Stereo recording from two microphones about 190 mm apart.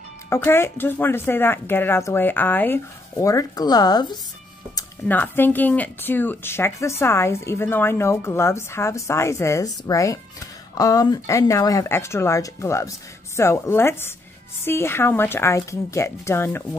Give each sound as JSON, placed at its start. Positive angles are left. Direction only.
{"t": 0.3, "sound": "a woman's voice", "side_deg": 10}
{"t": 5.0, "sound": "a woman's voice", "side_deg": 10}